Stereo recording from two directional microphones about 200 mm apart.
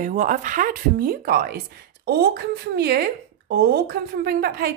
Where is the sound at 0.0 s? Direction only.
40° right (ahead or behind).